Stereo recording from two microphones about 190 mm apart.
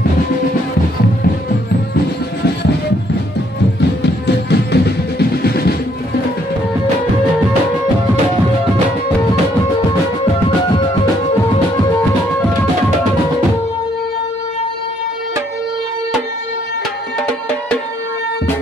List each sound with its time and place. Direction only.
4.0 s music: 60° left (ahead or behind)